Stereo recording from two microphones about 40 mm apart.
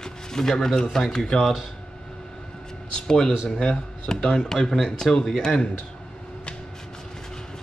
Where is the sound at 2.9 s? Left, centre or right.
Centre.